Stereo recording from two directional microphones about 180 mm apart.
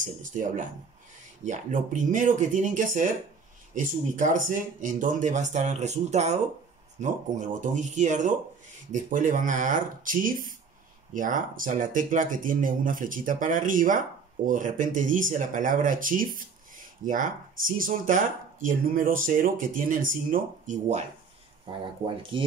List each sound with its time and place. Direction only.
0.0 s speech: 45° right (ahead or behind)
21.8 s speech: 30° right (ahead or behind)